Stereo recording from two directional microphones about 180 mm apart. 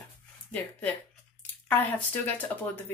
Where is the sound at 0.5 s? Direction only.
10° left (ahead or behind).